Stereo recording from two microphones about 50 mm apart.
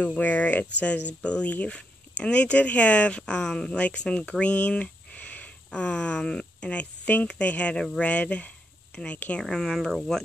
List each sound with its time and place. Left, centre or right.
0.0 s speech: left
5.7 s speech: centre
9.4 s speech: centre